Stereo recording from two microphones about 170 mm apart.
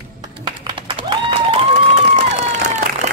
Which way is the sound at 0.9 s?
30° right (ahead or behind).